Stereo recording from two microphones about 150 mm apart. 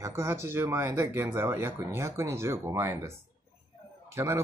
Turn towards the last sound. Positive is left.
turn(degrees=-15)  # may be behind; listen again after turning